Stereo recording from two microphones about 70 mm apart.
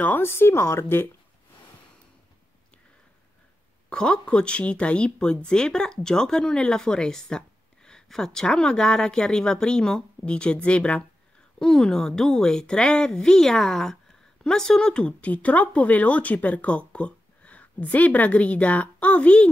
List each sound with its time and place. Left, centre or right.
0.0 s speech: left
3.9 s a woman's voice: centre